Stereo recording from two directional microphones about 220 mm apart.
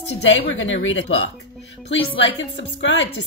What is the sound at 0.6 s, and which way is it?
Speech, 55° left (ahead or behind).